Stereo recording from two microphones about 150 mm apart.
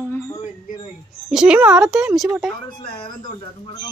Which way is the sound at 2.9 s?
35° left (ahead or behind).